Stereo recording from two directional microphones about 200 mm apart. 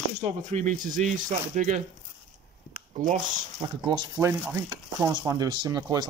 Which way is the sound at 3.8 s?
20° right (ahead or behind).